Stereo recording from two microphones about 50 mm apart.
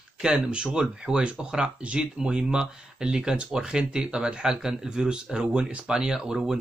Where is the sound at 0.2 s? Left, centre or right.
Centre.